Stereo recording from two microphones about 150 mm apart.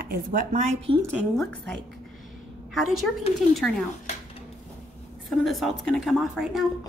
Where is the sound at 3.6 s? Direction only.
Centre (ahead or behind).